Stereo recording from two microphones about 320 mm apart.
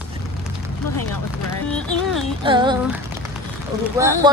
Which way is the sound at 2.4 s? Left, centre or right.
Centre.